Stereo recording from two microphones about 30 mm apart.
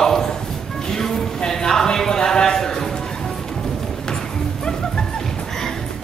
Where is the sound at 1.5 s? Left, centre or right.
Centre.